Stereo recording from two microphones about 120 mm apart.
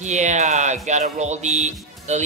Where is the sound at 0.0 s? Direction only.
80° right.